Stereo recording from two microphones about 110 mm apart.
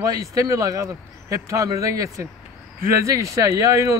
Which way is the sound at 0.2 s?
30° right (ahead or behind).